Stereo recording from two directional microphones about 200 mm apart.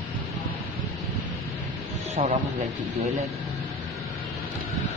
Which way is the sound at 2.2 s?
40° right (ahead or behind).